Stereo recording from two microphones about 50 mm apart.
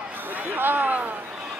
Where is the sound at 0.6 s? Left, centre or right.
Right.